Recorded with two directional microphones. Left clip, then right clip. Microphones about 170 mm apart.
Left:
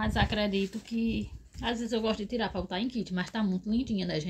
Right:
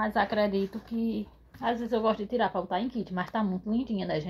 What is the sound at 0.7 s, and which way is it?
A woman's voice, 25° left (ahead or behind).